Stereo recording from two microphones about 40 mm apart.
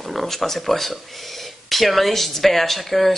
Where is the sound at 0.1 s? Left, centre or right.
Centre.